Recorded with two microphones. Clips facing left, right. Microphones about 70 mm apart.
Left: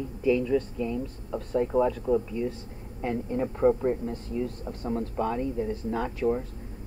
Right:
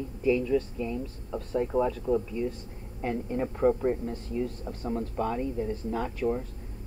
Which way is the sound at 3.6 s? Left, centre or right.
Centre.